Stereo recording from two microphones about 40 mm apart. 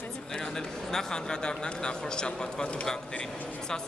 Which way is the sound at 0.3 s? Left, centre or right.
Centre.